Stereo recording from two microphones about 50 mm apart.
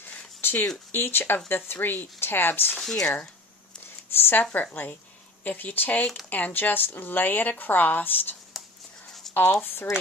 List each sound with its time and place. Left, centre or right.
0.0 s a sound: left
0.9 s speech: left
2.8 s speech: centre
4.1 s speech: left
4.4 s a woman's voice: left
9.5 s speech: left